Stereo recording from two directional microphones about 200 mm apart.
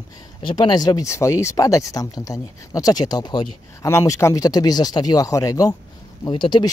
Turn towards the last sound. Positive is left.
turn(degrees=25)  # may be behind; listen again after turning